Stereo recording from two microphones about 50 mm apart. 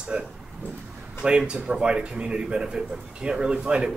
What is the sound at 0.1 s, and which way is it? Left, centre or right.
A man's voice, centre.